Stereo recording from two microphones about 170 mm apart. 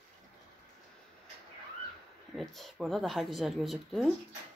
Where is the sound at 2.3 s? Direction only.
Centre (ahead or behind).